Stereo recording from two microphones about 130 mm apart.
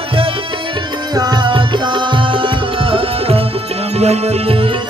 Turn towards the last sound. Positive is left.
turn(degrees=-55)  # may be behind; listen again after turning